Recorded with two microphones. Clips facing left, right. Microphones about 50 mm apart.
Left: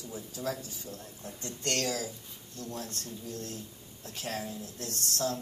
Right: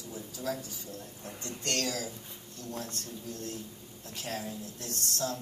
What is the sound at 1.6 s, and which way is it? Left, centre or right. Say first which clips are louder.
Speech: left 1 dB; left.